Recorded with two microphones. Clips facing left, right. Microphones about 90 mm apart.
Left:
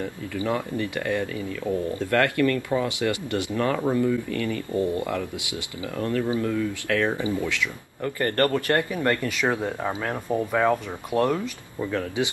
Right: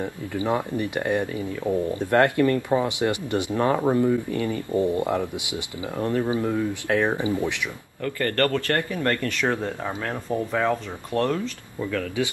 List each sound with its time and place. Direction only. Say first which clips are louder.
0.0 s speech: right 1 dB; 20° right (ahead or behind)
8.0 s speech: even; 20° left (ahead or behind)